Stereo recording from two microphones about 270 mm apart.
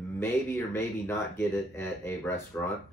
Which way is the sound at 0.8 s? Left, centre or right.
Centre.